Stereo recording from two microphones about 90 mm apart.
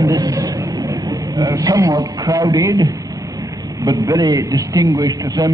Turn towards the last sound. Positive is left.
turn(degrees=-50)  # may be behind; listen again after turning